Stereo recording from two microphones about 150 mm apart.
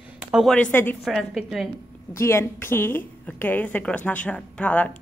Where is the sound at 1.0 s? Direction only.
Centre (ahead or behind).